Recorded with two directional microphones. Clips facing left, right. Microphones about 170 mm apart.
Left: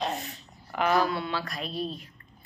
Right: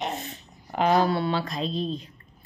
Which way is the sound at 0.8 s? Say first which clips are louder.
Right 4 dB; 30° right (ahead or behind).